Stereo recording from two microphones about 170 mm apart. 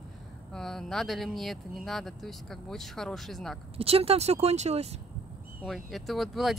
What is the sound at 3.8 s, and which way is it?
Speech, 35° right (ahead or behind).